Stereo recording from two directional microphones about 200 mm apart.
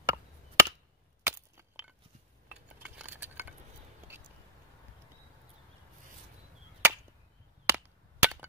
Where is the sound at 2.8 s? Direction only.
5° right (ahead or behind).